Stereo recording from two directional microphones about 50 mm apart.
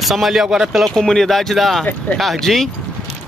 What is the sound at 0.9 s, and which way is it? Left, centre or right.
Speech, centre.